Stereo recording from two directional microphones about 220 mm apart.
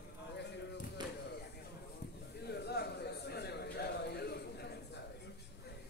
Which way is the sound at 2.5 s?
50° left (ahead or behind).